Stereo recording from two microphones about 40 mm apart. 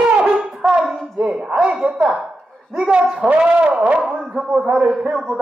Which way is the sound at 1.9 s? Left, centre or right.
Centre.